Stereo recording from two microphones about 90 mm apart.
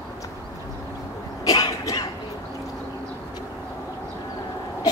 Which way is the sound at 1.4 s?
45° left (ahead or behind).